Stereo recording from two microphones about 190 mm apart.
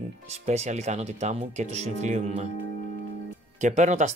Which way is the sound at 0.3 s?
35° right (ahead or behind).